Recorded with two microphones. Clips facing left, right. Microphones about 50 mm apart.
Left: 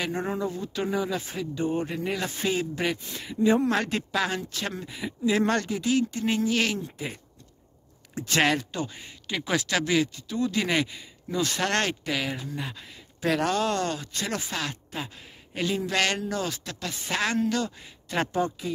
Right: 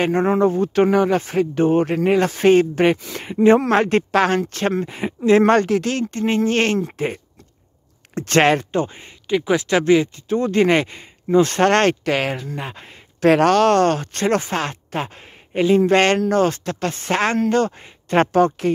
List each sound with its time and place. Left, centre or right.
0.0 s speech: right
3.3 s speech: right
3.9 s speech: right
8.1 s speech: right
8.5 s speech: right
12.5 s speech: right
13.2 s speech: right
14.9 s a sound: right
15.7 s speech: right
18.3 s speech: right